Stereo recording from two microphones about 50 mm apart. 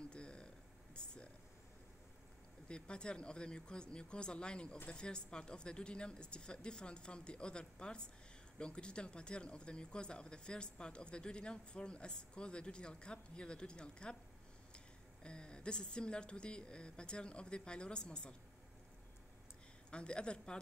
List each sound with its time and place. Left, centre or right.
0.0 s a sound: centre
2.7 s speech: centre
15.2 s speech: centre
19.9 s speech: left